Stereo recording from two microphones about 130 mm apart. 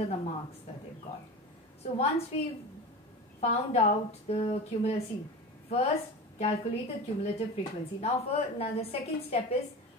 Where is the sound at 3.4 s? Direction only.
55° left (ahead or behind).